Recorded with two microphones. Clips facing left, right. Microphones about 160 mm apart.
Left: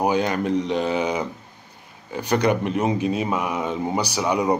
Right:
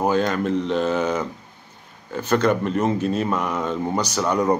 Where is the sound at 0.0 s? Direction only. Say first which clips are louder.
Right 1 dB; 15° left (ahead or behind).